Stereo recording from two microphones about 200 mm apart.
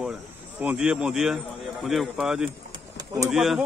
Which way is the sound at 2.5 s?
20° right (ahead or behind).